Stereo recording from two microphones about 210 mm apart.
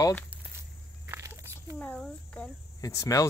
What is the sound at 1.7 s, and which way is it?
Speech, 5° left (ahead or behind).